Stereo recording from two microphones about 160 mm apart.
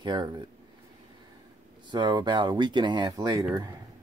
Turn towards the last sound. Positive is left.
turn(degrees=-25)  # may be behind; listen again after turning